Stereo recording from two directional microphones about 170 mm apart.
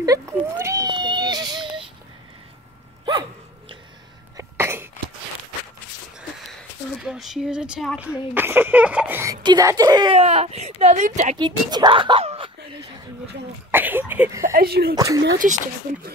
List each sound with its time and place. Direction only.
0.0 s a sound: 20° right (ahead or behind)
3.1 s a sound: 25° right (ahead or behind)
4.4 s cough: 15° right (ahead or behind)
6.5 s speech: centre (ahead or behind); by 10.1 s 25° right (ahead or behind)
10.1 s speech: 40° right (ahead or behind)
11.3 s a woman's voice: 25° right (ahead or behind)
13.7 s a sound: 10° right (ahead or behind)
14.4 s speech: 60° right (ahead or behind)
15.0 s a woman's voice: 20° right (ahead or behind)
15.3 s speech: 50° right (ahead or behind)